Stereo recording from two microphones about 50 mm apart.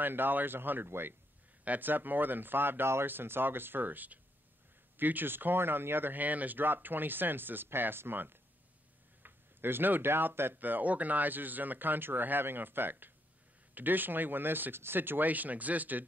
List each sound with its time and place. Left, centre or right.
0.0 s speech: right
1.6 s speech: right
10.6 s speech: right